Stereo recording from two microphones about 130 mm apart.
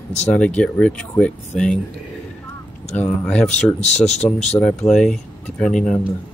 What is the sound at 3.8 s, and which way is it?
Speech, 60° left (ahead or behind).